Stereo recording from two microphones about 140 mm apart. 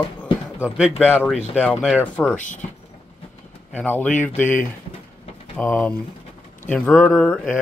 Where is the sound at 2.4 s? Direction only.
60° left (ahead or behind).